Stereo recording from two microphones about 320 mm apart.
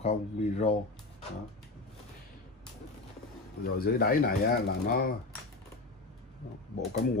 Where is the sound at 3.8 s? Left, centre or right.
Left.